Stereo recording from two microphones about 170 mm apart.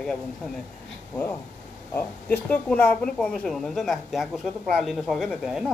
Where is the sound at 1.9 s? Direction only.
10° left (ahead or behind).